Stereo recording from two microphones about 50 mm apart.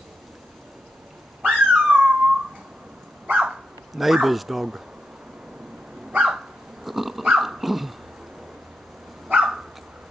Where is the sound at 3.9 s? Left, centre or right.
Centre.